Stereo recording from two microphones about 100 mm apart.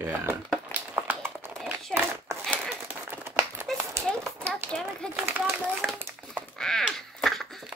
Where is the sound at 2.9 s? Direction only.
20° right (ahead or behind).